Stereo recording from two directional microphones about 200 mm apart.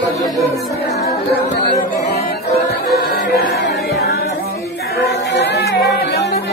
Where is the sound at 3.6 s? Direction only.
55° left (ahead or behind).